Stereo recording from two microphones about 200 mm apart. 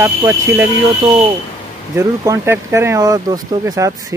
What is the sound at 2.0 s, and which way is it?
Speech, 10° right (ahead or behind).